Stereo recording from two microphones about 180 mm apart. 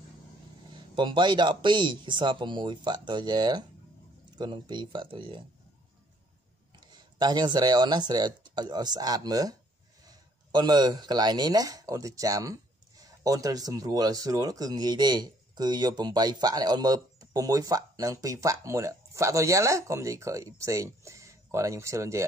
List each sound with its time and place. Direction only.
0.9 s speech: 25° right (ahead or behind)
6.8 s speech: 25° right (ahead or behind)